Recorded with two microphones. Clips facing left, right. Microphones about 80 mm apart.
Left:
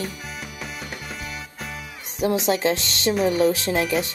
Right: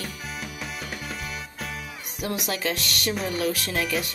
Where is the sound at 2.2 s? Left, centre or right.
Left.